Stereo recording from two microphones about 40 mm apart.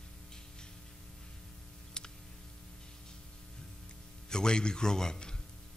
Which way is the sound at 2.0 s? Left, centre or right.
Centre.